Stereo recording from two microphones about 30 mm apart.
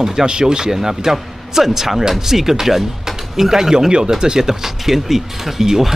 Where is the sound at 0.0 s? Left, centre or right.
Centre.